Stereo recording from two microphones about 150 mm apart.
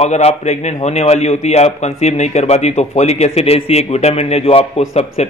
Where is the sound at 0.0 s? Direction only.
45° left (ahead or behind).